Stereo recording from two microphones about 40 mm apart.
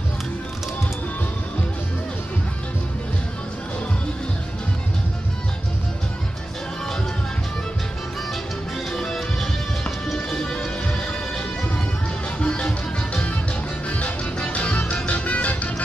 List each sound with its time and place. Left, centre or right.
8.9 s music: centre
10.1 s music: left